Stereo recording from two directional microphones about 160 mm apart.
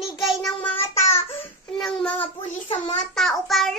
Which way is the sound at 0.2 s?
Centre (ahead or behind).